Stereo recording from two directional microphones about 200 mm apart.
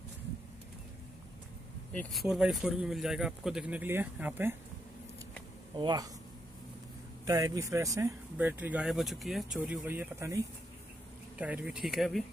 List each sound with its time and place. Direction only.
1.9 s speech: 5° left (ahead or behind)
5.8 s speech: 20° right (ahead or behind)
7.2 s speech: 15° right (ahead or behind); by 12.3 s centre (ahead or behind)